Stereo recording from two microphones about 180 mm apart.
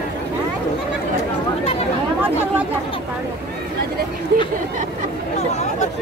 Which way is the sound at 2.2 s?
10° right (ahead or behind).